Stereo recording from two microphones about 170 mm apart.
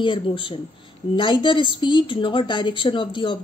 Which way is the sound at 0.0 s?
30° left (ahead or behind).